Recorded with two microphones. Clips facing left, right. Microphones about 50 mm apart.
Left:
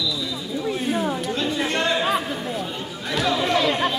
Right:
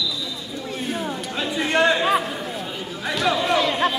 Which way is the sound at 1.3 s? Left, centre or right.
Centre.